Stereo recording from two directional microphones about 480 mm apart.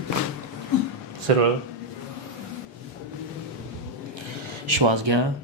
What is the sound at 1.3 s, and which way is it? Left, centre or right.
Speech, right.